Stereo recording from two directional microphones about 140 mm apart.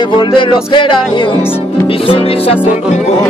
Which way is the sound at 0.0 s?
35° left (ahead or behind).